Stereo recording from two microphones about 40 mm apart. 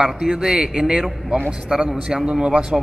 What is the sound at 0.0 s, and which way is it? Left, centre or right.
A man's voice, right.